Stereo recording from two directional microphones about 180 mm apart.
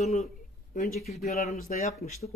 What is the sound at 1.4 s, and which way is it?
Speech, 50° left (ahead or behind).